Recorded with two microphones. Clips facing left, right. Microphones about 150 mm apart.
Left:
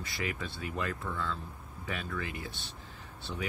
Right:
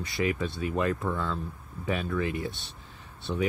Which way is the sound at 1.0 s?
55° right (ahead or behind).